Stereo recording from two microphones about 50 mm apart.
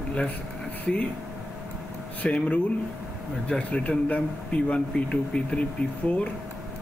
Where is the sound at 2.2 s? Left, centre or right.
Left.